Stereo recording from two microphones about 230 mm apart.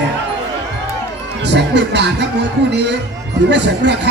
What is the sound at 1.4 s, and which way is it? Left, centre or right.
Speech, right.